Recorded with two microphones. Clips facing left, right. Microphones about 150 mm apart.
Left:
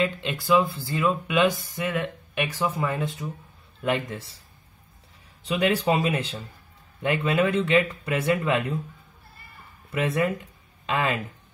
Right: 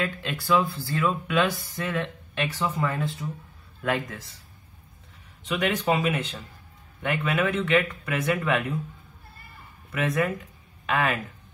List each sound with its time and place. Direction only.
0.0 s speech: 20° left (ahead or behind)
5.4 s speech: 35° left (ahead or behind)
9.9 s speech: 30° left (ahead or behind)